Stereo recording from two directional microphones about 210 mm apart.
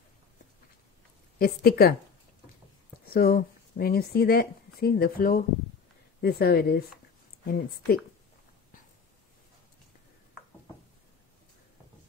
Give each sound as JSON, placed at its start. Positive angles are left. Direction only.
{"t": 1.4, "sound": "speech", "side_deg": 45}
{"t": 3.1, "sound": "speech", "side_deg": 45}